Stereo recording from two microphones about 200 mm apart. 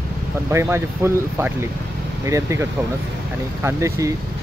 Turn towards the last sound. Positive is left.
turn(degrees=-15)  # may be behind; listen again after turning